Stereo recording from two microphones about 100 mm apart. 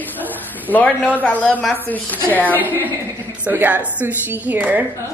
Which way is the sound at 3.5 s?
15° right (ahead or behind).